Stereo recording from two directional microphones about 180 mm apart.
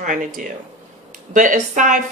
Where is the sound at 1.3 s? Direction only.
45° right (ahead or behind).